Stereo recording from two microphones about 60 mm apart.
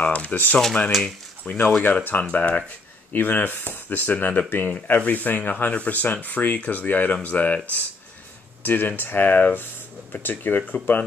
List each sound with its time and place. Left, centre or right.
0.0 s speech: left
8.6 s speech: left